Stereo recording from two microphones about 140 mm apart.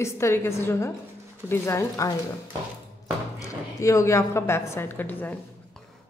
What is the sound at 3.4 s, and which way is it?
A woman's voice, 25° left (ahead or behind).